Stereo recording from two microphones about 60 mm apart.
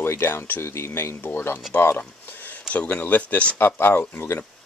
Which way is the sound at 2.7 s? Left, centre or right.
Left.